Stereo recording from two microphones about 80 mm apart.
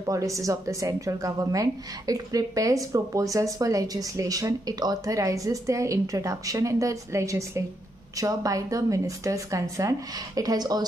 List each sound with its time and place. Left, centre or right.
0.0 s a woman's voice: right